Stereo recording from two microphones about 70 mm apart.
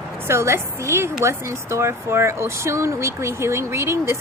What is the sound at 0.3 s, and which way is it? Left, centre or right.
Speech, right.